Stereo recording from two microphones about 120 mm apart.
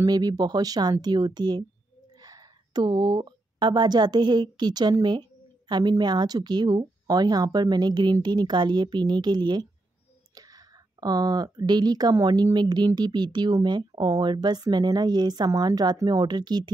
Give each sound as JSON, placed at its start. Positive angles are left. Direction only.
{"t": 0.0, "sound": "speech", "side_deg": -35}